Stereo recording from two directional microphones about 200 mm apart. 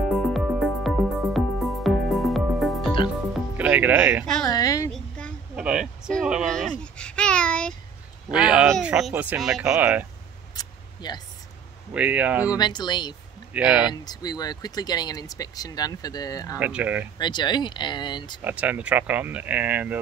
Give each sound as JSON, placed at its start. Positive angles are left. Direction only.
{"t": 0.1, "sound": "music", "side_deg": 0}
{"t": 3.5, "sound": "speech", "side_deg": -10}
{"t": 4.5, "sound": "a sound", "side_deg": 20}
{"t": 4.9, "sound": "a sound", "side_deg": 5}
{"t": 8.3, "sound": "speech", "side_deg": -5}
{"t": 10.5, "sound": "a sound", "side_deg": 20}
{"t": 11.9, "sound": "speech", "side_deg": -5}
{"t": 12.5, "sound": "speech", "side_deg": 20}
{"t": 13.5, "sound": "speech", "side_deg": -5}
{"t": 14.0, "sound": "speech", "side_deg": 20}
{"t": 16.5, "sound": "speech", "side_deg": -5}
{"t": 17.2, "sound": "speech", "side_deg": 20}
{"t": 18.4, "sound": "speech", "side_deg": -10}